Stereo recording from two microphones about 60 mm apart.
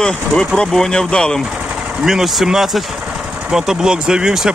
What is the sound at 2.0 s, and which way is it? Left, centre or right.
Speech, centre.